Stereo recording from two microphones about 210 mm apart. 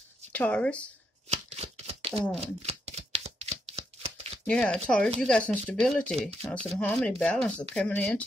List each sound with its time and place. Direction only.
0.3 s speech: 5° left (ahead or behind)
1.3 s shuffling cards: 30° right (ahead or behind)
2.4 s a sound: 30° right (ahead or behind)
4.5 s speech: 5° left (ahead or behind)